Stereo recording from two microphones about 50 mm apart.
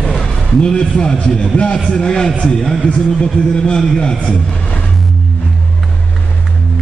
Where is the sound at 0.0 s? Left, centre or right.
Centre.